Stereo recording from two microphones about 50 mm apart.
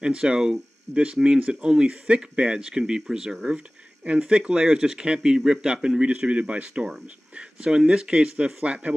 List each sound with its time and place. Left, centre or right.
0.0 s speech: centre
8.6 s speech: right